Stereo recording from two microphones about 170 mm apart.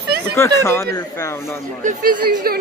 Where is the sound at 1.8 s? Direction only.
50° right (ahead or behind).